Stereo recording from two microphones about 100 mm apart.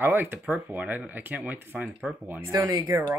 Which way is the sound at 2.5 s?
35° right (ahead or behind).